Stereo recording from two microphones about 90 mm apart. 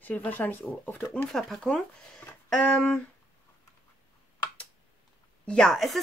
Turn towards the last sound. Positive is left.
turn(degrees=5)  # may be behind; listen again after turning